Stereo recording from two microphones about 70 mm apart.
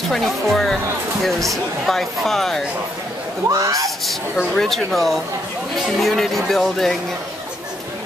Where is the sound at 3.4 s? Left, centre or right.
Right.